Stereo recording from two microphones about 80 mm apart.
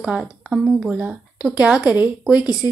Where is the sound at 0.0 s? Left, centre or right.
Centre.